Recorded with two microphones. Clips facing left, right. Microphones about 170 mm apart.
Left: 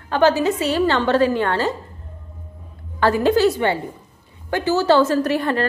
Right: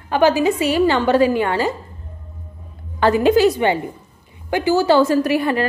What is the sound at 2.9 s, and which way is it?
A woman's voice, 20° right (ahead or behind).